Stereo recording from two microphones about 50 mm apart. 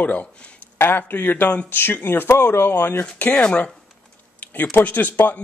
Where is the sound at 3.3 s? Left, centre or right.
Left.